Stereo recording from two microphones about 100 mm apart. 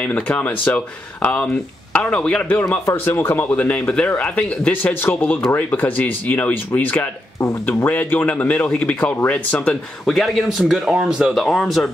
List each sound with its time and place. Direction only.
0.0 s speech: 15° left (ahead or behind)
2.8 s speech: 25° left (ahead or behind); by 11.9 s 5° left (ahead or behind)